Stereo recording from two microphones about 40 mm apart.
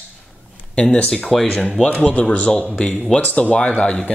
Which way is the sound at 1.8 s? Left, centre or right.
Left.